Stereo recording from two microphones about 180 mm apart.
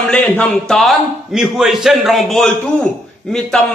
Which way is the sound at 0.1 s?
10° left (ahead or behind).